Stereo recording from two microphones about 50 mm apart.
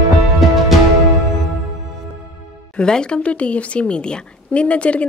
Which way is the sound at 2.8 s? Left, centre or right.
Centre.